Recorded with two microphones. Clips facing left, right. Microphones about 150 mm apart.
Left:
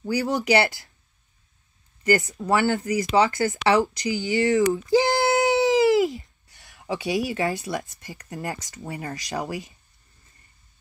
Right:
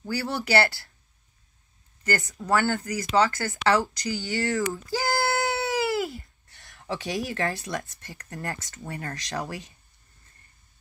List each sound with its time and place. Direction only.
0.0 s speech: 15° left (ahead or behind)
2.3 s speech: 15° left (ahead or behind)
3.6 s a sound: 15° left (ahead or behind)
6.7 s speech: 10° left (ahead or behind)